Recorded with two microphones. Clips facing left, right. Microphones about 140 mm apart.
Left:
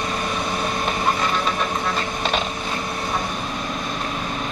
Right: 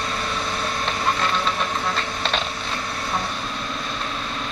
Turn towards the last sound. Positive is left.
turn(degrees=15)  # may be behind; listen again after turning